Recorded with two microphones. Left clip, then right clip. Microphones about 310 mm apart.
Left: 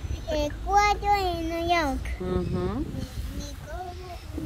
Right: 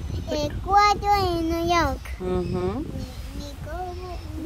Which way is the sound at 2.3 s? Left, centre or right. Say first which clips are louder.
Right 4 dB; right.